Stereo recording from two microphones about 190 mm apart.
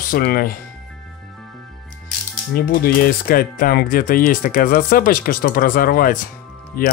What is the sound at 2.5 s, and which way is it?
Speech, 50° left (ahead or behind).